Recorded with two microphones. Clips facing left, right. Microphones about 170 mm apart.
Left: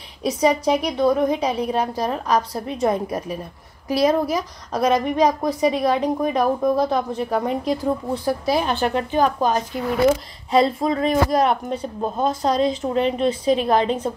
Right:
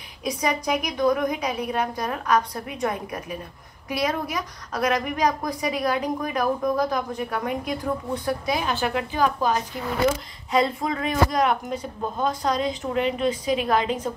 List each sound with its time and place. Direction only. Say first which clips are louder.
0.4 s a woman's voice: left 7 dB; 30° left (ahead or behind)
10.5 s speech: left 5 dB; 30° left (ahead or behind)